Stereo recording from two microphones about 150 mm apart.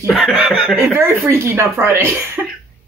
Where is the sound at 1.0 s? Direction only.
15° right (ahead or behind).